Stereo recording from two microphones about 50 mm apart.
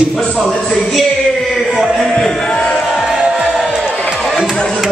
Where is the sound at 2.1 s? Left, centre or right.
Centre.